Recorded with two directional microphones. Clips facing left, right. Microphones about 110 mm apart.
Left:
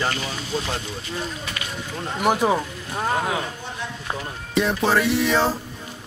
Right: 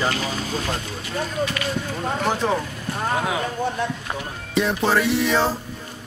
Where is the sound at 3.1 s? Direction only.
Centre (ahead or behind).